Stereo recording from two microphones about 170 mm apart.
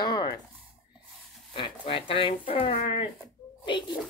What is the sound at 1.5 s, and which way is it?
A child's voice, 30° left (ahead or behind).